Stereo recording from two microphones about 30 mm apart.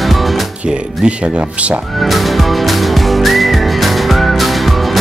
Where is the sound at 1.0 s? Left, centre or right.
Right.